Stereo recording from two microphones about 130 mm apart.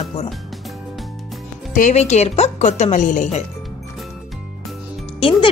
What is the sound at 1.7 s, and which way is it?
Speech, 75° left (ahead or behind).